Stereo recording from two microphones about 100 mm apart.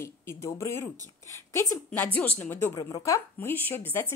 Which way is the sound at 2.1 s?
15° left (ahead or behind).